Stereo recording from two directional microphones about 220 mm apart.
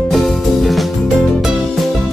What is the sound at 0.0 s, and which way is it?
Music, centre (ahead or behind).